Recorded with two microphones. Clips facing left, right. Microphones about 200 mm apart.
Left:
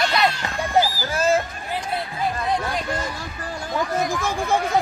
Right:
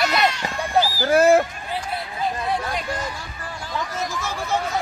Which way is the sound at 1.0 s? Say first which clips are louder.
Right 6 dB; 60° right (ahead or behind).